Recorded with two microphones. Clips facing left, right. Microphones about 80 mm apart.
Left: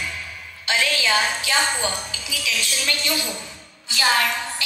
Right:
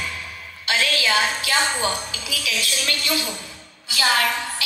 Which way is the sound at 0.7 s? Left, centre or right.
Left.